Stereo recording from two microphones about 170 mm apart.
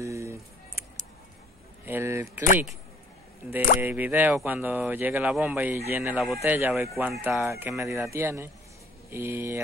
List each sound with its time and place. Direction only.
0.0 s a sound: 15° right (ahead or behind)
1.9 s speech: 15° right (ahead or behind)
3.8 s speech: 10° right (ahead or behind)
6.4 s speech: 10° right (ahead or behind)